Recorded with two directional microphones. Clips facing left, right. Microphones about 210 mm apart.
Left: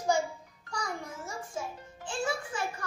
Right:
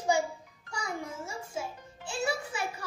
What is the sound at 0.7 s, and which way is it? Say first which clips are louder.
A child's voice: right 1 dB; 10° right (ahead or behind).